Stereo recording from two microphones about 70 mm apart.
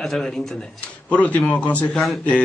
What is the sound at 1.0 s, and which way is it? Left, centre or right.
Speech, centre.